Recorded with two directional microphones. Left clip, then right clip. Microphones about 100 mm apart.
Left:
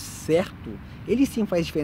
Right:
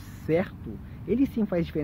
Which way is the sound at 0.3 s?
30° left (ahead or behind).